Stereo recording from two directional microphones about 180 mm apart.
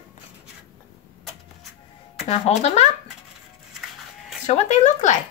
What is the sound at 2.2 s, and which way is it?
Speech, 35° left (ahead or behind).